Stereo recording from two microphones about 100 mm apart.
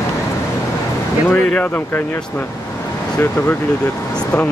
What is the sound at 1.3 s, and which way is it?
Speech, 20° left (ahead or behind).